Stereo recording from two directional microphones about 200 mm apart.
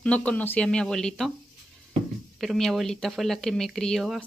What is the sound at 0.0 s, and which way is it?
Speech, 5° left (ahead or behind).